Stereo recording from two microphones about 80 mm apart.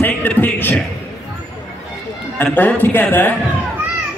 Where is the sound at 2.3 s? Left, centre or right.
Left.